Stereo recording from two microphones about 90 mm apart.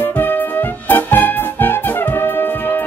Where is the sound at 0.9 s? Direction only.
20° left (ahead or behind).